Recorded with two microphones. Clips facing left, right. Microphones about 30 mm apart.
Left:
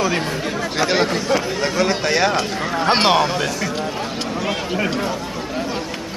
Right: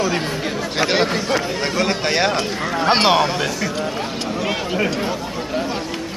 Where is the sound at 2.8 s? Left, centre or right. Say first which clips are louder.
Even; centre.